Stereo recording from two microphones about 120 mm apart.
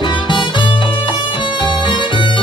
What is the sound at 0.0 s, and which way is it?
Music, 40° left (ahead or behind).